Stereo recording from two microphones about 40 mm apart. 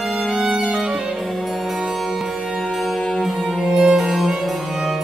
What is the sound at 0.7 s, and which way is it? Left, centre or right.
Music, right.